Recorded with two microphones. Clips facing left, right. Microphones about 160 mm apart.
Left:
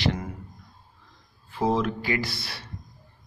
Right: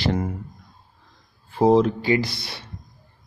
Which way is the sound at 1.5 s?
30° right (ahead or behind).